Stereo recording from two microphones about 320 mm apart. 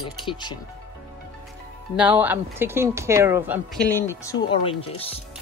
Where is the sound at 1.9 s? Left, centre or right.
Centre.